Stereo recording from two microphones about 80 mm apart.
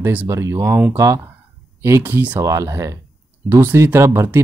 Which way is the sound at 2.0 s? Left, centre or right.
Right.